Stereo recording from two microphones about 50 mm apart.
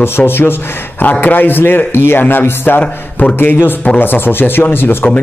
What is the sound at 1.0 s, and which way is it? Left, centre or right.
A man's voice, left.